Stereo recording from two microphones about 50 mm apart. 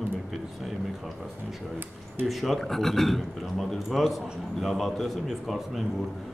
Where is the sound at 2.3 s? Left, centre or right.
Centre.